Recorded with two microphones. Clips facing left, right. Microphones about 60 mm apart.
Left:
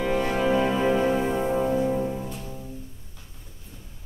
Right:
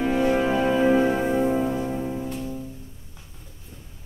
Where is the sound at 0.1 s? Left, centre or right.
Centre.